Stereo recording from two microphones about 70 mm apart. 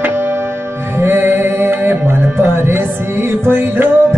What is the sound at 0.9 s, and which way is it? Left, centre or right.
Music, right.